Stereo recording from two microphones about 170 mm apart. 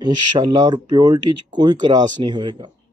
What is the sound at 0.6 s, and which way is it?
Speech, 25° right (ahead or behind).